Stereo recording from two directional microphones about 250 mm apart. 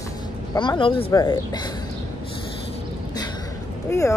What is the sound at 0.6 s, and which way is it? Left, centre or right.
Speech, centre.